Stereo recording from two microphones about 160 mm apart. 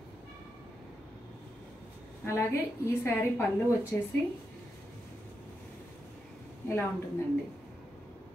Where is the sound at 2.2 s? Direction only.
15° left (ahead or behind).